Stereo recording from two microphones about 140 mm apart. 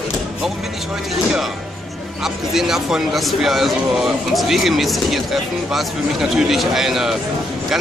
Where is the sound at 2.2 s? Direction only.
5° right (ahead or behind).